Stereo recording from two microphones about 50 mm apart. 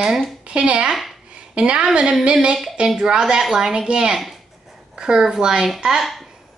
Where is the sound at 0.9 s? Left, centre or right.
Centre.